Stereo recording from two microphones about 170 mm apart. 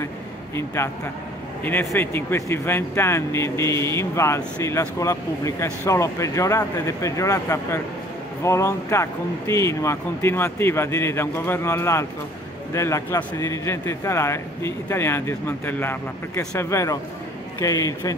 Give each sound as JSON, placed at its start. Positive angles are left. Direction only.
{"t": 0.8, "sound": "a man's voice", "side_deg": 15}